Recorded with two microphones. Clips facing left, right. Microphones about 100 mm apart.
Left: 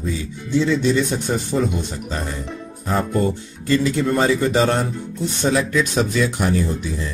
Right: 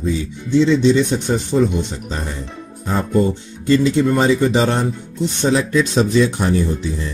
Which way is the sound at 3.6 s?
25° right (ahead or behind).